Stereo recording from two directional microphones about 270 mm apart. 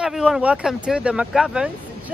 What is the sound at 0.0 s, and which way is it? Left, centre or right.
Speech, centre.